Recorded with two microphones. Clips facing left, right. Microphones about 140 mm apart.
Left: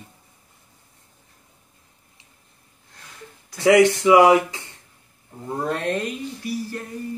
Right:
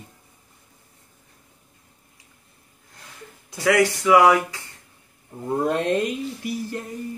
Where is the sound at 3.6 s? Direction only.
25° left (ahead or behind).